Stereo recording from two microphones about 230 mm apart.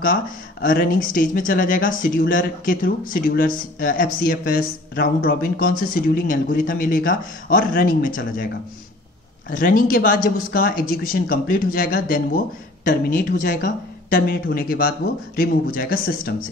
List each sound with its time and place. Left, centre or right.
0.0 s speech: left
9.5 s speech: left